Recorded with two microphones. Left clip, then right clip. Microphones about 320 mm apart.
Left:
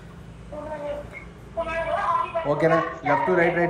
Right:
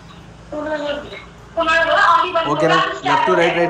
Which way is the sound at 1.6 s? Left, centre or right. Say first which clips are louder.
Right 12 dB; right.